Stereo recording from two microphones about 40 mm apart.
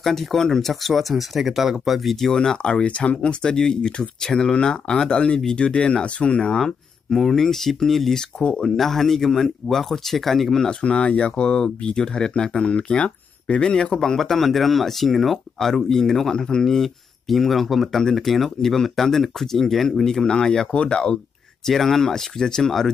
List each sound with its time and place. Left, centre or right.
0.0 s speech: centre
2.3 s speech: centre
3.2 s speech: centre
6.6 s speech: centre
10.7 s speech: left
12.6 s speech: left
13.9 s speech: centre
20.7 s speech: left
21.6 s speech: centre